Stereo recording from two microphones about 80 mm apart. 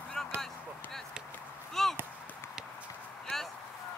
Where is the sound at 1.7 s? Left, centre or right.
Centre.